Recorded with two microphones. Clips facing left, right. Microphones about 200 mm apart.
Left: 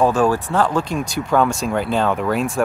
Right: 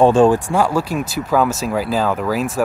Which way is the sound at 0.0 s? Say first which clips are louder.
Right 5 dB; 25° right (ahead or behind).